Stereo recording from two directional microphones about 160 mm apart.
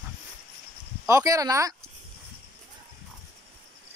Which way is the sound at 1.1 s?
20° right (ahead or behind).